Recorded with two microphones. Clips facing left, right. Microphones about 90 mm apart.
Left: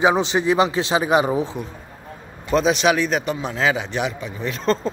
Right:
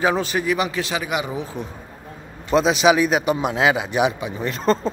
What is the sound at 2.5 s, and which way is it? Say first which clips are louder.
A man's voice: right 2 dB; 5° right (ahead or behind).